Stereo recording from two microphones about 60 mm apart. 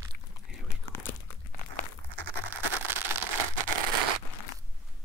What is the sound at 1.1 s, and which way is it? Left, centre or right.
Crumpling, left.